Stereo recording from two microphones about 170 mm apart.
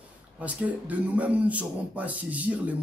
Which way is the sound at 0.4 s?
10° right (ahead or behind).